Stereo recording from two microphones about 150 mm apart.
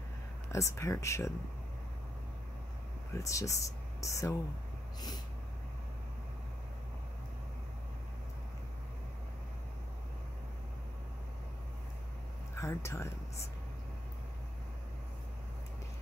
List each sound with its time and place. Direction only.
0.5 s speech: 20° left (ahead or behind)
3.2 s speech: 20° left (ahead or behind)
12.5 s speech: 20° left (ahead or behind)